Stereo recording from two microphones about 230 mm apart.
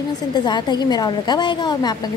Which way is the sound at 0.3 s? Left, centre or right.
Centre.